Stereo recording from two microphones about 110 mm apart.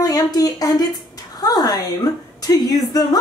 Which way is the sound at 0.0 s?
35° left (ahead or behind).